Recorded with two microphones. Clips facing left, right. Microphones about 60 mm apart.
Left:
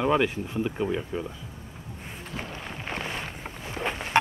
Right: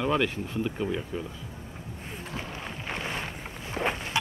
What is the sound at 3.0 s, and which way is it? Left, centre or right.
Boat, centre.